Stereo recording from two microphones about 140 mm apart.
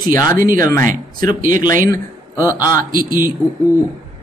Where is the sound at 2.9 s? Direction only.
90° right.